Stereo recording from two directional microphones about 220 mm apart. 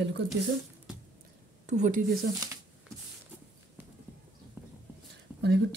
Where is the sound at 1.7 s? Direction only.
35° right (ahead or behind).